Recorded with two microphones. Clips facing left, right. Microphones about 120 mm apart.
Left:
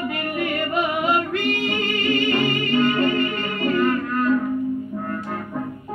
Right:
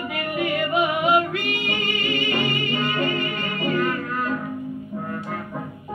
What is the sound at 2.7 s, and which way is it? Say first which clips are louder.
Music: left 5 dB; 10° right (ahead or behind).